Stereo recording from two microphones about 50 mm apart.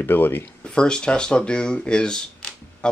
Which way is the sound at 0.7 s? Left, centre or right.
Centre.